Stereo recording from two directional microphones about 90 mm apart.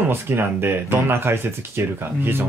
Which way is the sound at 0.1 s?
25° right (ahead or behind).